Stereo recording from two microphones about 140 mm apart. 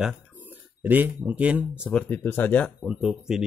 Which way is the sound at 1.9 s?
10° left (ahead or behind).